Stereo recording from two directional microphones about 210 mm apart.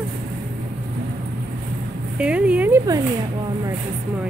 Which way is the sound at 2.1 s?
5° right (ahead or behind).